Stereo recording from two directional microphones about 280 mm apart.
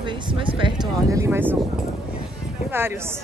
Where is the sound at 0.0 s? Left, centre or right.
Centre.